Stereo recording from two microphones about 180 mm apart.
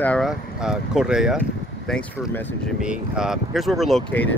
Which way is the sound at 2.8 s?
5° right (ahead or behind).